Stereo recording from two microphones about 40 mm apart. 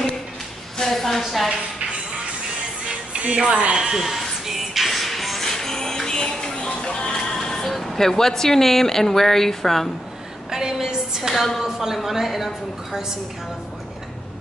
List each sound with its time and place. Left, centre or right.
0.7 s a woman's voice: centre
2.9 s music: right
3.7 s a woman's voice: centre
4.2 s music: centre
10.5 s a sound: centre
11.3 s a woman's voice: centre
11.6 s a woman's voice: centre